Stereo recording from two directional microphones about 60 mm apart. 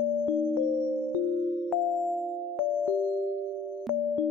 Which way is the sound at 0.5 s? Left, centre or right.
Left.